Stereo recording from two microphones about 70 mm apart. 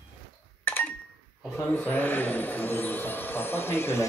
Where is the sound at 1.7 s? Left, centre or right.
Left.